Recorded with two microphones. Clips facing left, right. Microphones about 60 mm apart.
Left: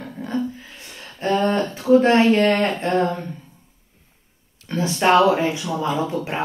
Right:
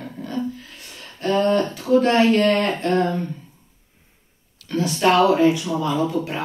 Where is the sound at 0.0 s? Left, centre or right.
Centre.